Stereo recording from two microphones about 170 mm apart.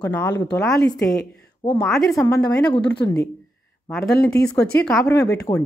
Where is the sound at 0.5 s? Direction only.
5° left (ahead or behind).